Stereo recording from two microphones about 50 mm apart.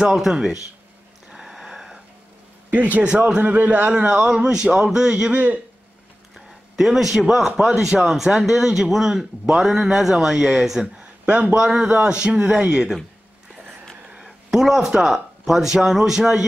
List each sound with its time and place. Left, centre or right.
0.1 s speech: centre
1.3 s a sound: centre
2.7 s a man's voice: right
3.0 s a man's voice: centre
5.3 s a man's voice: right
6.3 s a sound: centre
7.2 s speech: centre
14.0 s a sound: centre
15.1 s speech: centre